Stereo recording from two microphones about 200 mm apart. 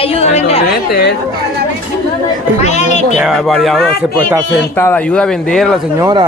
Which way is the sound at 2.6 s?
35° left (ahead or behind).